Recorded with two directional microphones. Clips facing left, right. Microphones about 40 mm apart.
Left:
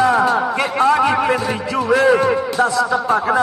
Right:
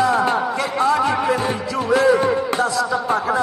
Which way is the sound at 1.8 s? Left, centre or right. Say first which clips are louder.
Left 2 dB; left.